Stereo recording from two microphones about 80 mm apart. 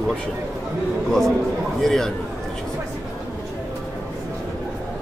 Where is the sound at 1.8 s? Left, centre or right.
Centre.